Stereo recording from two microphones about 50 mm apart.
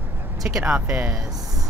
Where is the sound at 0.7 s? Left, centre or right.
Right.